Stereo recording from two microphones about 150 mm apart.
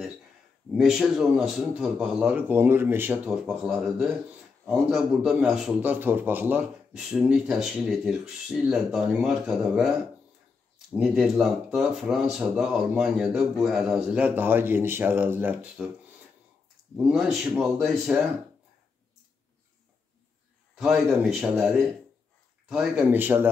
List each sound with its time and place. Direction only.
0.7 s a man's voice: centre (ahead or behind)
10.9 s speech: centre (ahead or behind)
16.9 s speech: 5° right (ahead or behind)
20.7 s speech: 5° right (ahead or behind)
23.1 s a man's voice: 10° right (ahead or behind)